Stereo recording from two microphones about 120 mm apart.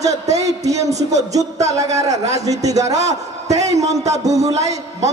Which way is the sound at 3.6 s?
70° right (ahead or behind).